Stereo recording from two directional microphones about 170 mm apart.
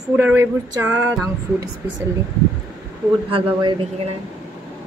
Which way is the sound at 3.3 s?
30° right (ahead or behind).